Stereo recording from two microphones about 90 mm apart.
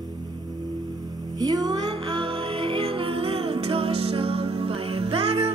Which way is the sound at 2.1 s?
75° right (ahead or behind).